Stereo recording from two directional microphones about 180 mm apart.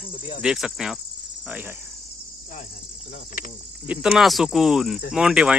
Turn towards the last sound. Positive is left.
turn(degrees=-5)  # may be behind; listen again after turning